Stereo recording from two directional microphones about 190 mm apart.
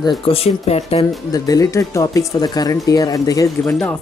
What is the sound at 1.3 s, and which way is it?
Speech, 20° left (ahead or behind).